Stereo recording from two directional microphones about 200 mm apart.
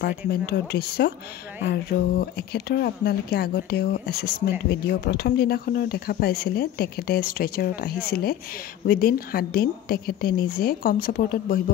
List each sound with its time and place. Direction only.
0.3 s speech: 55° left (ahead or behind)